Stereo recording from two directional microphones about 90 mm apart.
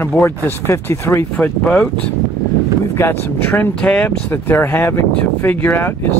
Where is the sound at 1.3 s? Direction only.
10° left (ahead or behind).